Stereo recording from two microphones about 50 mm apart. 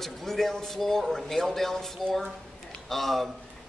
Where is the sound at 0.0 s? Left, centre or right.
Centre.